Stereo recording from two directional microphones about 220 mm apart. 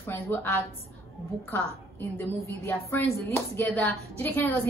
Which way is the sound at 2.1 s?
10° left (ahead or behind).